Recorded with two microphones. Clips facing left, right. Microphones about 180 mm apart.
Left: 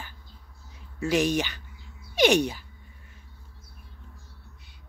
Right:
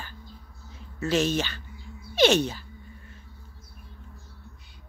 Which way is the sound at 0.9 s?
15° left (ahead or behind).